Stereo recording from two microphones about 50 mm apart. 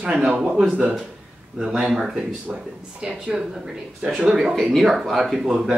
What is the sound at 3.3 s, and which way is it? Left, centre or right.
Speech, centre.